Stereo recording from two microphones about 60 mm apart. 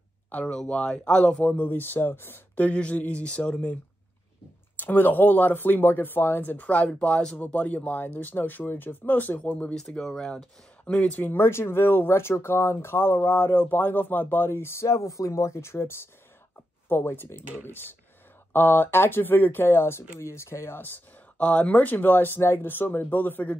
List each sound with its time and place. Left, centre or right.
0.3 s speech: left
4.7 s speech: left
9.8 s speech: centre
11.1 s speech: left
21.4 s speech: left